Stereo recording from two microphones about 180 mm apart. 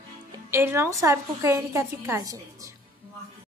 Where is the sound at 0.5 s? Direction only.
15° right (ahead or behind).